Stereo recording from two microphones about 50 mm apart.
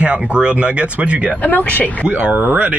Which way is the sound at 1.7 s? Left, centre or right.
Left.